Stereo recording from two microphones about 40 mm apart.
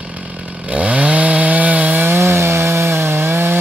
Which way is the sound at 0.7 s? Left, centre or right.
Right.